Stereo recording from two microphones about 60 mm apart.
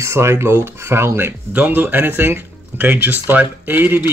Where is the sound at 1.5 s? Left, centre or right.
Right.